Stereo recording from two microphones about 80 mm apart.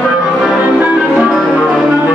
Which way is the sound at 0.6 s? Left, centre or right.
Right.